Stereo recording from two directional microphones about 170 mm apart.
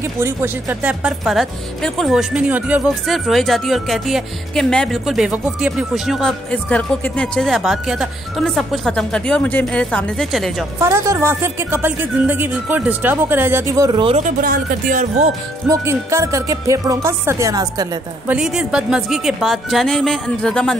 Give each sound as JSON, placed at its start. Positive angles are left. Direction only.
{"t": 0.2, "sound": "speech", "side_deg": -15}
{"t": 10.8, "sound": "a woman's voice", "side_deg": -15}
{"t": 14.0, "sound": "speech", "side_deg": -40}
{"t": 14.4, "sound": "speech", "side_deg": -55}
{"t": 15.7, "sound": "a woman's voice", "side_deg": -15}
{"t": 18.3, "sound": "speech", "side_deg": -5}